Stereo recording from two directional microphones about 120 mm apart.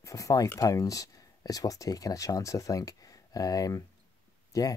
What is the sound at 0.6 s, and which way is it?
Speech, 30° left (ahead or behind).